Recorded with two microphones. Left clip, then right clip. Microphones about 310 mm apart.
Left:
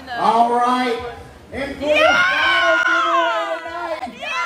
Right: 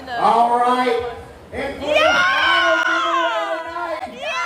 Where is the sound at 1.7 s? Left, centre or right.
Centre.